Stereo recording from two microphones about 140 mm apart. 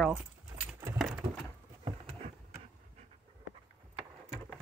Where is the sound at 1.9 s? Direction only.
45° right (ahead or behind).